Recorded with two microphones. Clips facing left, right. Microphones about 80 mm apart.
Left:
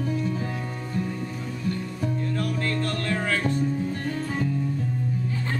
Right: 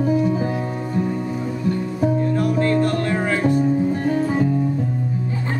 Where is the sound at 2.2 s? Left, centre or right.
Right.